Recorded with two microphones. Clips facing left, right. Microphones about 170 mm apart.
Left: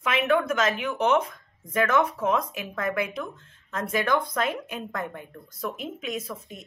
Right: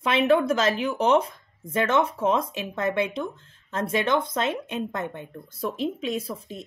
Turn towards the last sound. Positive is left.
turn(degrees=-30)  # may be behind; listen again after turning